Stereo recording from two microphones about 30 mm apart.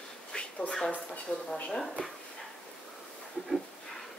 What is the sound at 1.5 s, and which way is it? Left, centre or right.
Speech, centre.